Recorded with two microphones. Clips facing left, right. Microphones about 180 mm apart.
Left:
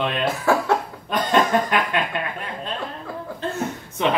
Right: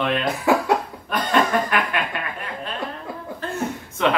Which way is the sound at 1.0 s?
20° left (ahead or behind).